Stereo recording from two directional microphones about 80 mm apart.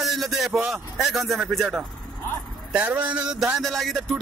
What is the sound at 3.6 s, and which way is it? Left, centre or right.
Speech, centre.